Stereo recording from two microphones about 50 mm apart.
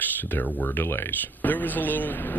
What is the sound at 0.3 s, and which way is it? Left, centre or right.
Speech, left.